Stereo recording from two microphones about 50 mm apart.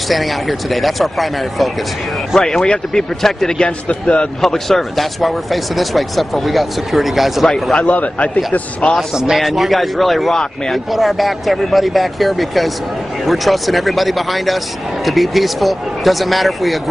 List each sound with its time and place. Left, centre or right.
0.1 s speech: centre
3.5 s a man's voice: left
4.4 s speech: centre
7.8 s a man's voice: left
9.1 s a man's voice: centre